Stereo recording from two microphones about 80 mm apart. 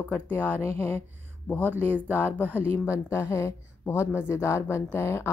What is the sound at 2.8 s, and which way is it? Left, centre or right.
A woman's voice, left.